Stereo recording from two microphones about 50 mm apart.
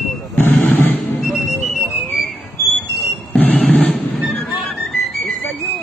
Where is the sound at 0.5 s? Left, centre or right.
Left.